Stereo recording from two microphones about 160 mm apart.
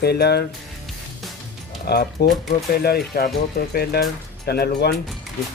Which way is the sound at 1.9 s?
90° left.